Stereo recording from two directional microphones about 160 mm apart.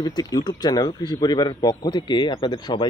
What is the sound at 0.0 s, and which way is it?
A man's voice, 25° left (ahead or behind).